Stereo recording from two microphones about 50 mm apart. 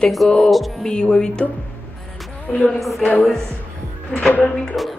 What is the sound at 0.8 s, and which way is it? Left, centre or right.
Speech, centre.